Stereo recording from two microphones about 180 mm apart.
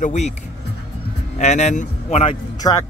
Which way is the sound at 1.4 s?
40° left (ahead or behind).